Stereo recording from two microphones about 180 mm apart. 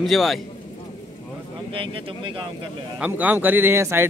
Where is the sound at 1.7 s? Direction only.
30° right (ahead or behind).